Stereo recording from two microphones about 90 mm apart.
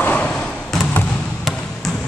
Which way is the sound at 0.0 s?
15° left (ahead or behind).